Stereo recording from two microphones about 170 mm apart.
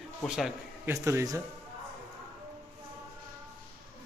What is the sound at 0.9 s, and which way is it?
Speech, 15° right (ahead or behind).